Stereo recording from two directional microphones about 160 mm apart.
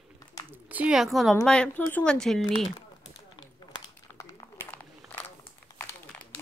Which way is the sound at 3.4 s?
20° left (ahead or behind).